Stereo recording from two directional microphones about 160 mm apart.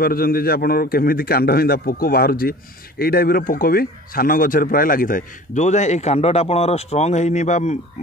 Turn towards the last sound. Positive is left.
turn(degrees=45)  # may be behind; listen again after turning